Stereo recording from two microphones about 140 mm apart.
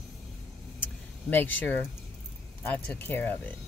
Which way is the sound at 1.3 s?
15° left (ahead or behind).